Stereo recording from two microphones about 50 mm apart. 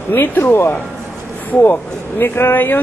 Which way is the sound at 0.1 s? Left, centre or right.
Left.